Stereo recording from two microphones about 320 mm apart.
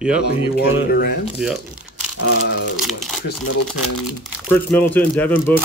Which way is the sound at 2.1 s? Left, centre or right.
Left.